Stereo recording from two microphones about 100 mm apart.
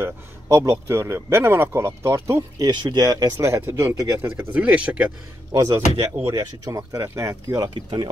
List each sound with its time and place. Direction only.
0.0 s a man's voice: 30° right (ahead or behind)
2.7 s a man's voice: 50° right (ahead or behind); by 4.6 s 25° right (ahead or behind)
4.6 s speech: 10° right (ahead or behind)
5.5 s speech: 40° right (ahead or behind)
7.6 s speech: 55° right (ahead or behind)